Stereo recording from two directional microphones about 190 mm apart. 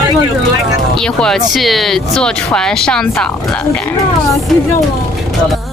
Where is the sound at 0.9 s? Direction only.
5° left (ahead or behind).